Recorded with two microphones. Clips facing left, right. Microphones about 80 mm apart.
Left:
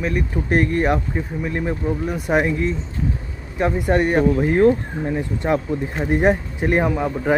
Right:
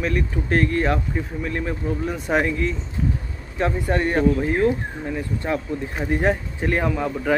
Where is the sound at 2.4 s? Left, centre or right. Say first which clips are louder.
Left 2 dB; centre.